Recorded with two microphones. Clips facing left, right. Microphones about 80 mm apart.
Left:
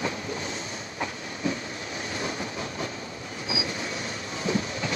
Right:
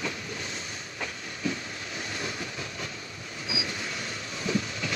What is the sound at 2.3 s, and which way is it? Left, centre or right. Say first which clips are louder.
Train: left 4 dB; left.